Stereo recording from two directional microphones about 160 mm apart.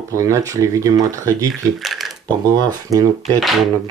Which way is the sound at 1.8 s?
Centre (ahead or behind).